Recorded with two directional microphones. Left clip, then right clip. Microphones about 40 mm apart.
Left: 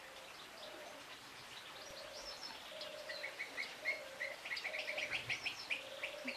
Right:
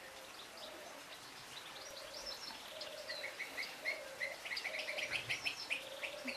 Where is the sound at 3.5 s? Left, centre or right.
Centre.